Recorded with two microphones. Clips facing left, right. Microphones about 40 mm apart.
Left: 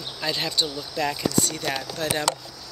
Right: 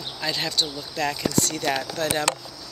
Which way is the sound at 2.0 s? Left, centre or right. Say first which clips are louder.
Right 2 dB; centre.